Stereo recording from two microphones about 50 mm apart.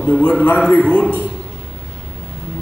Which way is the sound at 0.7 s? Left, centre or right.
Left.